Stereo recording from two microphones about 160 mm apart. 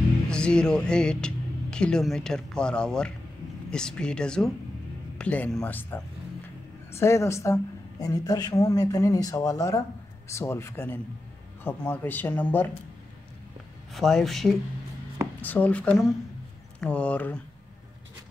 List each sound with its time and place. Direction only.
0.3 s a woman's voice: 5° left (ahead or behind)
13.9 s speech: centre (ahead or behind)